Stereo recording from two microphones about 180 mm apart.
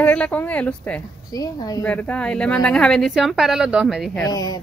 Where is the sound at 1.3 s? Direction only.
20° left (ahead or behind).